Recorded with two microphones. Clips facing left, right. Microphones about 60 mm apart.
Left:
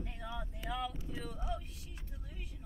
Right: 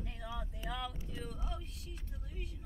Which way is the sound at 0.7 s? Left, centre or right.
Centre.